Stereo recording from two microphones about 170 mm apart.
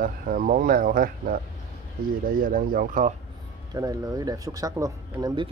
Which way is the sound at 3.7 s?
20° right (ahead or behind).